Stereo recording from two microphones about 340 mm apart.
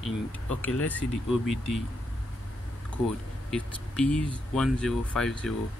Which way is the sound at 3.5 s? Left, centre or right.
Centre.